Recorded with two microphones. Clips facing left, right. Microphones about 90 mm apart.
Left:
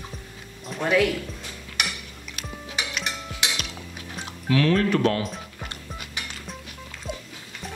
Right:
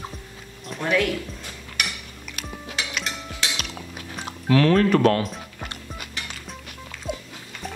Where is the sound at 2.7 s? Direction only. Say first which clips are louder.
Even; 10° left (ahead or behind).